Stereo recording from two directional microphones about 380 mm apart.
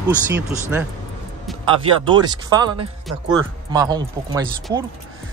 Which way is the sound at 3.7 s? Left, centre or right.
Centre.